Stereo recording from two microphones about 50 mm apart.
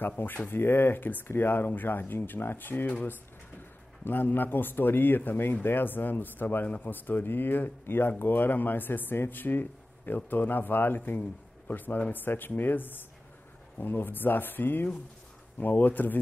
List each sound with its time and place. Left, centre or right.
0.2 s speech: left